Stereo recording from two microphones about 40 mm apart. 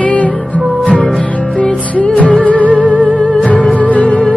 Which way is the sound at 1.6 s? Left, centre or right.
Left.